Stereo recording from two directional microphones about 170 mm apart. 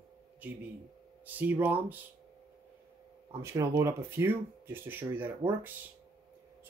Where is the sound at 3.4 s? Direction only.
15° right (ahead or behind).